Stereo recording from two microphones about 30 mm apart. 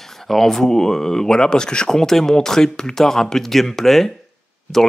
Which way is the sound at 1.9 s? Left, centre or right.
Centre.